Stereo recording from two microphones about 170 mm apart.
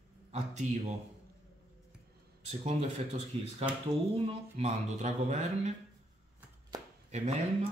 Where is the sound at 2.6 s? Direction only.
40° right (ahead or behind).